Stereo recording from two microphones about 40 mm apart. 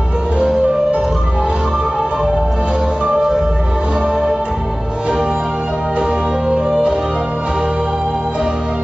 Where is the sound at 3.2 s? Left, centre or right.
Centre.